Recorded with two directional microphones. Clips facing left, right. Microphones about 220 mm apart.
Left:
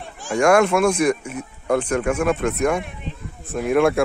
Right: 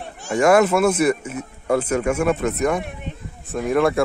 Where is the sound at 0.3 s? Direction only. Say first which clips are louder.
Right 1 dB; 5° right (ahead or behind).